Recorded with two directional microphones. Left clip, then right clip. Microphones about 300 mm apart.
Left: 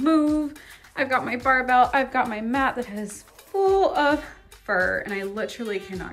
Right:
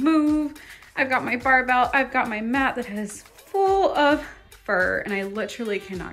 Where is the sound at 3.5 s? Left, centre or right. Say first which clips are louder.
Even; centre.